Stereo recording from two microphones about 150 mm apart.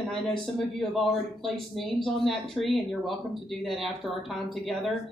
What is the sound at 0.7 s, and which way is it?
Speech, centre (ahead or behind).